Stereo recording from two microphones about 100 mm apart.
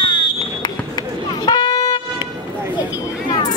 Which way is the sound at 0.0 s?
60° left (ahead or behind).